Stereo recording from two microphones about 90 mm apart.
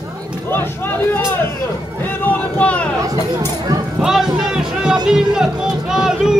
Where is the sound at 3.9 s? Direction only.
5° right (ahead or behind).